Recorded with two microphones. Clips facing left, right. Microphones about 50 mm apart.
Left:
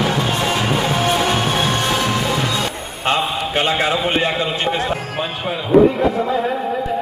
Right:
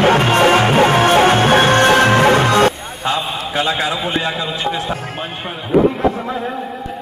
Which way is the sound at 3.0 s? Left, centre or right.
Left.